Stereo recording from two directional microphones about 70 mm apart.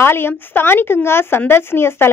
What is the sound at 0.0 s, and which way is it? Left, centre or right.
A woman's voice, left.